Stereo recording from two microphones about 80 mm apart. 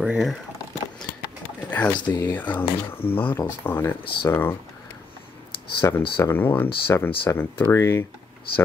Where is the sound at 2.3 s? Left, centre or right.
Left.